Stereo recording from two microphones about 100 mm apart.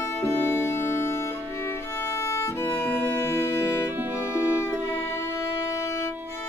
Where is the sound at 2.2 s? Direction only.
25° left (ahead or behind).